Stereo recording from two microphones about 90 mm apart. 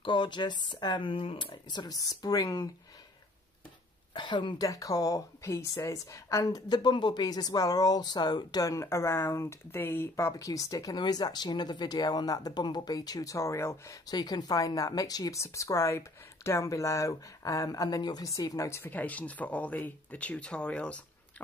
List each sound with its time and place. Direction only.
0.0 s speech: 60° left (ahead or behind)
2.0 s speech: 40° left (ahead or behind)
4.1 s speech: 60° left (ahead or behind)
4.6 s speech: 40° left (ahead or behind)
10.3 s speech: 40° left (ahead or behind)
14.0 s speech: 50° left (ahead or behind)
18.8 s speech: 20° left (ahead or behind)